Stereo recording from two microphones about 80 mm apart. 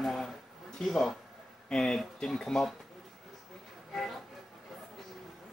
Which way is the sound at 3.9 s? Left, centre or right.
Centre.